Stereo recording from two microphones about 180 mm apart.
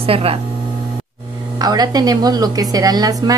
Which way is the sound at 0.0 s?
30° right (ahead or behind).